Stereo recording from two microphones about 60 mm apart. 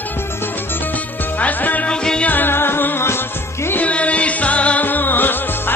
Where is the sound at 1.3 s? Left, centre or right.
Left.